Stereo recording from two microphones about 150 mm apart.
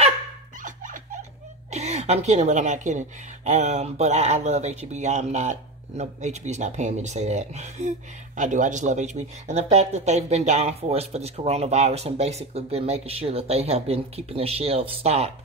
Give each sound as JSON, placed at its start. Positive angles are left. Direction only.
{"t": 0.6, "sound": "dog", "side_deg": -60}
{"t": 1.7, "sound": "speech", "side_deg": -50}